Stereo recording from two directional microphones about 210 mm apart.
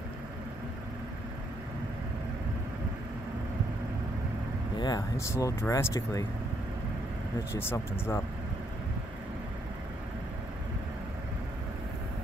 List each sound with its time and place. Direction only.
4.7 s speech: 20° left (ahead or behind)
7.5 s speech: 10° left (ahead or behind)